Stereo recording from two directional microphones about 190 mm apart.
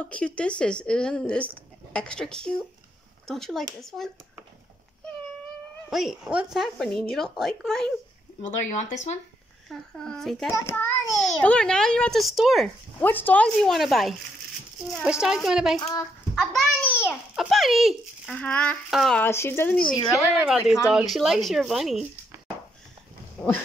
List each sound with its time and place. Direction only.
0.0 s a child's voice: 5° left (ahead or behind)
5.9 s a child's voice: centre (ahead or behind)
8.4 s speech: 40° left (ahead or behind)
9.7 s a child's voice: centre (ahead or behind)
10.5 s child singing: 15° left (ahead or behind)
11.1 s a child's voice: 5° left (ahead or behind)
15.9 s a child's voice: 20° left (ahead or behind)
17.1 s a child's voice: centre (ahead or behind)
19.8 s a woman's voice: 25° left (ahead or behind)
20.9 s a child's voice: centre (ahead or behind)